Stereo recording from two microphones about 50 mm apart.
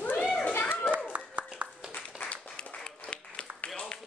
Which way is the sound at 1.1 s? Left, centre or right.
Right.